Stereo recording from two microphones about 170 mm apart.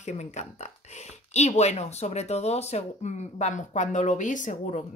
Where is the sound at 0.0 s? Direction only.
40° left (ahead or behind).